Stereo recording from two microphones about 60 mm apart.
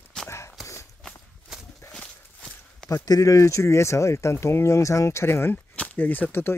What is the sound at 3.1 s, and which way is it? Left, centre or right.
Speech, left.